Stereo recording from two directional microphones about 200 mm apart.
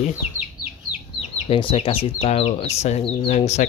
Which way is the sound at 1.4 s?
25° left (ahead or behind).